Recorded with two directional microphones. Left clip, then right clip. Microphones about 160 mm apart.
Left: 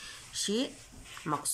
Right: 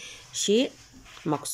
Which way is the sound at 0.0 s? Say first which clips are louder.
Right 6 dB; 15° right (ahead or behind).